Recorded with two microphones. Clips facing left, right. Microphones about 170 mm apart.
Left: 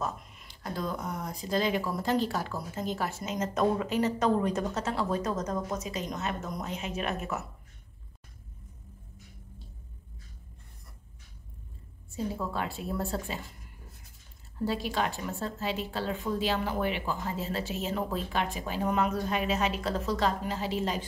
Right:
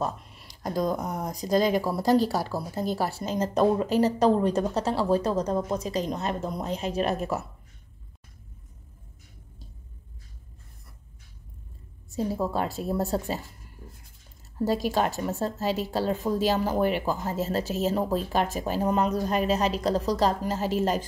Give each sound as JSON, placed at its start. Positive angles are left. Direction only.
{"t": 0.0, "sound": "speech", "side_deg": -35}
{"t": 12.1, "sound": "speech", "side_deg": -40}
{"t": 14.6, "sound": "speech", "side_deg": -40}